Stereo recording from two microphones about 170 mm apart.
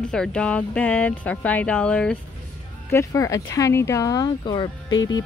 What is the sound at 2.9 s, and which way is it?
Speech, 20° left (ahead or behind).